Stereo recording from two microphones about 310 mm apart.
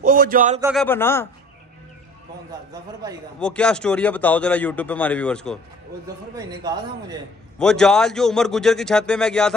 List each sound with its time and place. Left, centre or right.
0.0 s speech: right
0.6 s speech: centre
0.8 s a man's voice: centre
2.7 s speech: centre
3.3 s speech: centre
6.3 s speech: centre
7.5 s speech: centre